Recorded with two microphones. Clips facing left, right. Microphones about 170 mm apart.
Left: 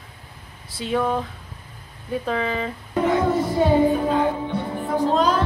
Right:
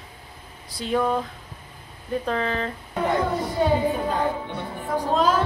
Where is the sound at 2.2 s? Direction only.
5° left (ahead or behind).